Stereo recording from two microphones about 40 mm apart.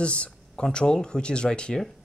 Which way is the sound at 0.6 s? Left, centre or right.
Centre.